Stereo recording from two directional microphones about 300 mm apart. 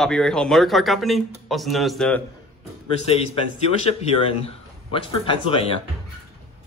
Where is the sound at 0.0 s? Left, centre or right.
Centre.